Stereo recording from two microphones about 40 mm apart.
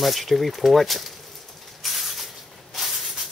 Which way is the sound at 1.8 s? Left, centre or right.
Centre.